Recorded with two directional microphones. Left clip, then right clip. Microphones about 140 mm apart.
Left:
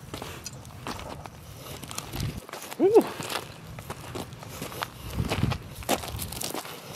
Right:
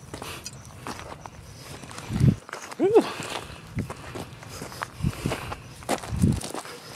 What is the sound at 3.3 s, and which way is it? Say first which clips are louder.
Walk: left 1 dB; centre (ahead or behind).